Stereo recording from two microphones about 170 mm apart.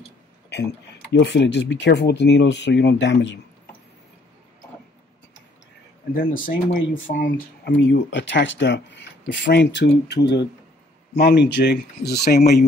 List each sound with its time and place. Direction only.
1.1 s speech: 90° left
6.1 s speech: 60° left (ahead or behind); by 7.0 s 75° left (ahead or behind)
7.1 s speech: 55° left (ahead or behind)
7.8 s speech: 90° left
11.1 s speech: 75° left (ahead or behind)